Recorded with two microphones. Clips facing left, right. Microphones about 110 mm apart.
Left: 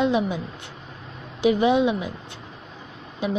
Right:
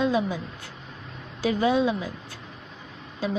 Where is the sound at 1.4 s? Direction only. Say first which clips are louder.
Left 4 dB; 20° left (ahead or behind).